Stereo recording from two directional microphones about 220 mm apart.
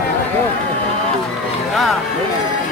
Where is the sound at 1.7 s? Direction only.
Centre (ahead or behind).